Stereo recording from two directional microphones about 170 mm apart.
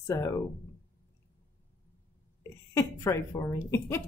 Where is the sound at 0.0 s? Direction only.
15° left (ahead or behind).